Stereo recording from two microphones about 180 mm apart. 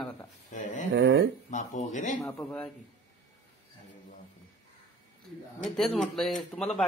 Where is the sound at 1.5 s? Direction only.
40° left (ahead or behind).